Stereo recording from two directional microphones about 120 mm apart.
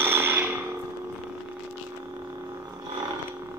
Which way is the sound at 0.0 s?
15° right (ahead or behind).